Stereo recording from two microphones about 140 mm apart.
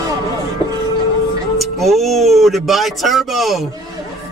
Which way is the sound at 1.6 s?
Centre (ahead or behind).